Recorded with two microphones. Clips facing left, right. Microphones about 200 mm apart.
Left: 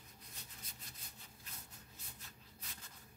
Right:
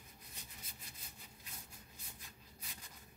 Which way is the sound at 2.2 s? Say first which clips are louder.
Right 1 dB; 15° right (ahead or behind).